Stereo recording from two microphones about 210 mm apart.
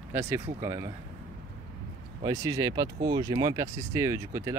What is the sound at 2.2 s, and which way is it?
Speech, 15° right (ahead or behind).